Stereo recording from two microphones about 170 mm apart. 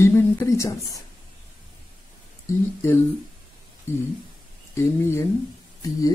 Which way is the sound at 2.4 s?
15° left (ahead or behind).